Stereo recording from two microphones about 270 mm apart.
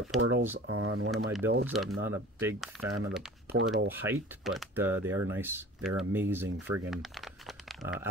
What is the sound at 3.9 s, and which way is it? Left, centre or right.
Speech, centre.